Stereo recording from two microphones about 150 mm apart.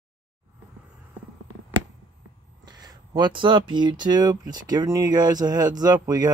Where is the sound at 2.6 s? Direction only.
30° right (ahead or behind).